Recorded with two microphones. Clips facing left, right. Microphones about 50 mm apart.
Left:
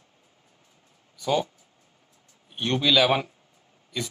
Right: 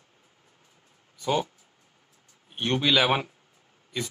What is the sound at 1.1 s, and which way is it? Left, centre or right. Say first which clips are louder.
Speech: left 1 dB; centre.